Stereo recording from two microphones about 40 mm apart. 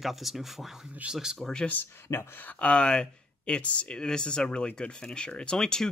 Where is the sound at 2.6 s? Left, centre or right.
Left.